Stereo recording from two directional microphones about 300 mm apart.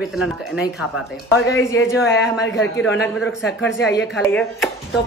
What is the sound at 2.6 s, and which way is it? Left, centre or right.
Speech, left.